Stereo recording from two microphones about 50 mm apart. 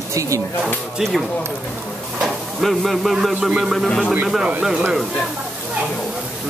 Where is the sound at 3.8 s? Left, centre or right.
Centre.